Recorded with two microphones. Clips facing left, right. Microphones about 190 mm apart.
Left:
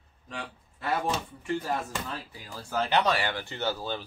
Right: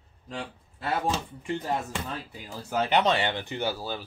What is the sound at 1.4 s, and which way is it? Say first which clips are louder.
Speech: even; 20° right (ahead or behind).